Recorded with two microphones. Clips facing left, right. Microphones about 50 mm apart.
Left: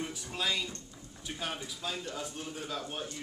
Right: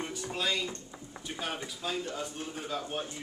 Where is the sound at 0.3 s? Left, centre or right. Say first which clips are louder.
Right 2 dB; centre.